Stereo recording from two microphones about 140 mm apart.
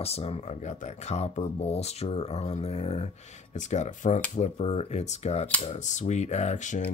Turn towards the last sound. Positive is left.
turn(degrees=60)  # may be behind; listen again after turning